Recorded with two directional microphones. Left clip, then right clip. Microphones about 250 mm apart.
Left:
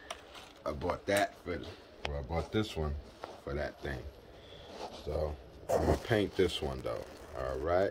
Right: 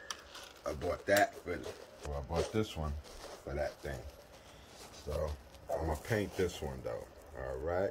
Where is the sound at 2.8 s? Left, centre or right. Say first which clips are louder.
Left 4 dB; centre.